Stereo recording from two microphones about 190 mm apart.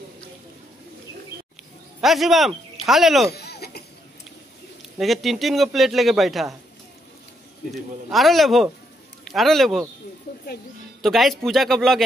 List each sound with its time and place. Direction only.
2.0 s speech: centre (ahead or behind)
3.3 s a sound: 55° left (ahead or behind)
4.9 s a man's voice: centre (ahead or behind)
8.1 s a man's voice: centre (ahead or behind)
11.0 s a man's voice: centre (ahead or behind)